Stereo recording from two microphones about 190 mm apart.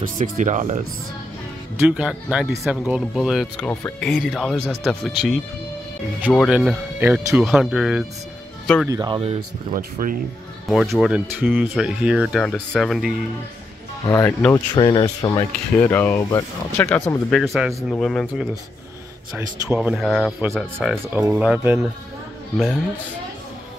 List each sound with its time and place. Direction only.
0.0 s speech: 40° right (ahead or behind)
1.9 s speech: 5° right (ahead or behind)
3.8 s speech: 10° left (ahead or behind)
4.2 s speech: centre (ahead or behind)
8.8 s speech: 20° right (ahead or behind)
9.8 s speech: 50° right (ahead or behind)
10.7 s speech: centre (ahead or behind)
14.0 s speech: 20° left (ahead or behind)
17.3 s speech: centre (ahead or behind)
20.4 s speech: 10° right (ahead or behind)